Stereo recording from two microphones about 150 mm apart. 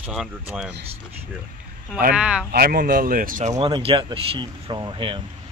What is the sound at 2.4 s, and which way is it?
Speech, 85° right.